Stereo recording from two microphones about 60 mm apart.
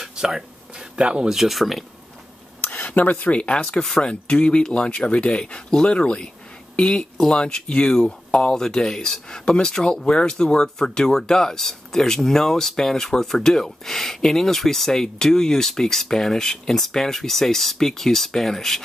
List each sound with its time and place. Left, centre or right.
0.0 s speech: centre
2.6 s cutlery: left
3.3 s speech: centre